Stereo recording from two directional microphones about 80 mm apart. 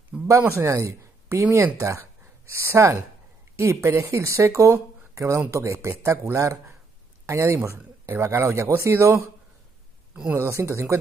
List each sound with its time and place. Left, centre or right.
0.1 s a sound: centre
0.5 s speech: right
10.3 s speech: right